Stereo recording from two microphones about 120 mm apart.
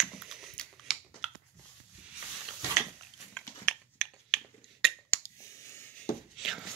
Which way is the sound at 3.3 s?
5° left (ahead or behind).